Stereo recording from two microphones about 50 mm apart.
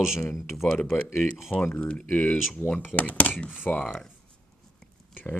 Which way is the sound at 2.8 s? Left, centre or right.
Left.